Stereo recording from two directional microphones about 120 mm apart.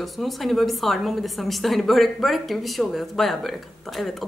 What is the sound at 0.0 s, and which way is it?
A woman's voice, centre (ahead or behind).